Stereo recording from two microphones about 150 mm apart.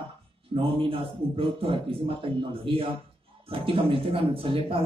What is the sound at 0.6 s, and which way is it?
Speech, 35° right (ahead or behind).